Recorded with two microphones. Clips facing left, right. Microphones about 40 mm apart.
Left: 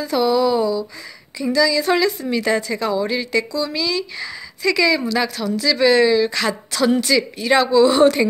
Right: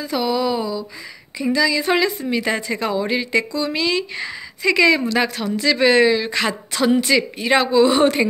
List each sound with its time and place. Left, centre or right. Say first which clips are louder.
0.0 s speech: left 3 dB; centre
1.4 s speech: left 1 dB; right